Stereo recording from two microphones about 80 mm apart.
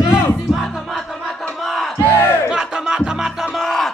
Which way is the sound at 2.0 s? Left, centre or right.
Left.